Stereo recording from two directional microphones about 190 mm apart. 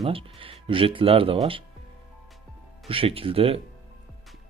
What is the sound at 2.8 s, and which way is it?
Speech, 30° right (ahead or behind).